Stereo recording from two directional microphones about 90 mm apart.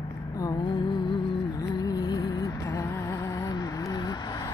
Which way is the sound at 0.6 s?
60° left (ahead or behind).